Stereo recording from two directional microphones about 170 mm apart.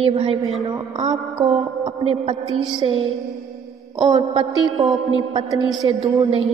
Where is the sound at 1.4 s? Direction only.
35° right (ahead or behind).